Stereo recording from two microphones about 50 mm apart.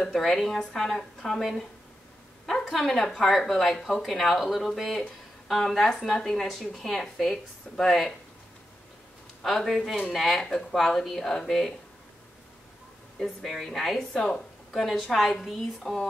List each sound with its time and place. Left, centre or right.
0.1 s speech: centre
2.7 s speech: centre
9.4 s speech: centre
13.2 s speech: centre
14.1 s a sound: centre
14.8 s speech: centre